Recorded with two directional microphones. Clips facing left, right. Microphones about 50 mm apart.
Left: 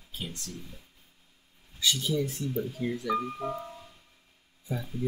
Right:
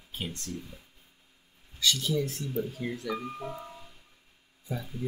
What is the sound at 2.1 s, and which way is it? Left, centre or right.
Speech, centre.